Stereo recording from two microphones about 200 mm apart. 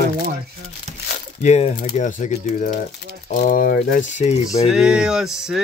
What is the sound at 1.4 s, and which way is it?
Speech, 35° left (ahead or behind).